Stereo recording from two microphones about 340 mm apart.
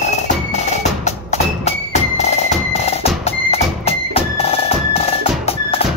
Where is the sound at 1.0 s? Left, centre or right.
Centre.